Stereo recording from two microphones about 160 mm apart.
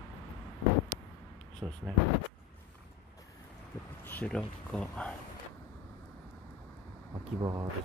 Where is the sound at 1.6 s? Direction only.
25° right (ahead or behind).